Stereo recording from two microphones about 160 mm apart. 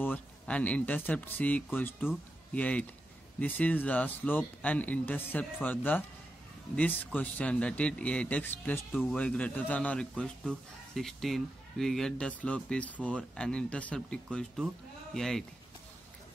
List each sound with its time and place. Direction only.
0.0 s speech: 10° left (ahead or behind)
7.1 s speech: 10° left (ahead or behind)